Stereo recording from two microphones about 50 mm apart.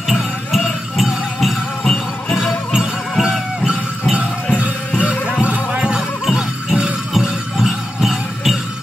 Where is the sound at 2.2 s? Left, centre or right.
Centre.